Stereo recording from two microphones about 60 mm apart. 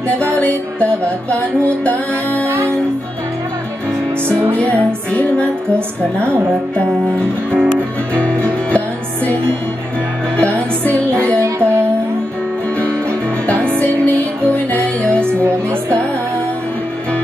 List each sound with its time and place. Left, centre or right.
0.3 s music: centre
4.6 s music: left
6.2 s music: right
7.7 s music: left
11.3 s music: right
13.5 s music: left